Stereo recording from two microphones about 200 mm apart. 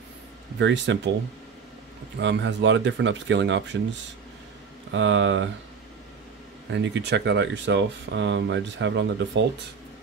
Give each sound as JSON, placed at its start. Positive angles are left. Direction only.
{"t": 0.6, "sound": "speech", "side_deg": -65}
{"t": 2.1, "sound": "speech", "side_deg": -60}
{"t": 4.9, "sound": "speech", "side_deg": -65}
{"t": 6.7, "sound": "speech", "side_deg": -60}